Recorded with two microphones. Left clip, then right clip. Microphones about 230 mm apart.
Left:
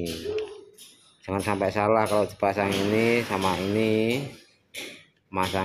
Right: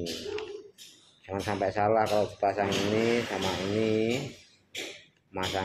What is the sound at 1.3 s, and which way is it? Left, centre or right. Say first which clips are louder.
Speech: left 4 dB; left.